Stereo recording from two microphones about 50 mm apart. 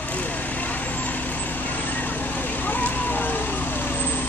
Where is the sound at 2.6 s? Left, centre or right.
Left.